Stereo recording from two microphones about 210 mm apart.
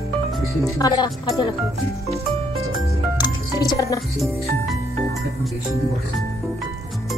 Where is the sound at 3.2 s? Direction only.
15° left (ahead or behind).